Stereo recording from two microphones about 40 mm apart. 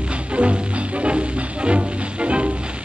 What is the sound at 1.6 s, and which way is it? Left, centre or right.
Music, right.